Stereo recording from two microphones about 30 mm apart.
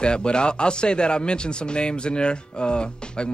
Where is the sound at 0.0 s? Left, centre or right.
Left.